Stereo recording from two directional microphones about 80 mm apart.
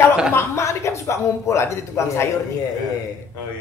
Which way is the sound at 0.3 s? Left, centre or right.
Left.